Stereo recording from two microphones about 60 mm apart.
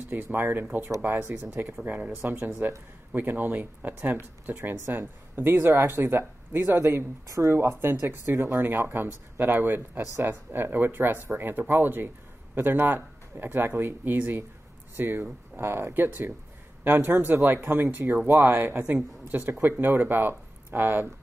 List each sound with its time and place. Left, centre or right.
0.1 s speech: right
1.9 s speech: right
7.2 s speech: right
7.8 s speech: right
8.3 s speech: right
8.9 s speech: right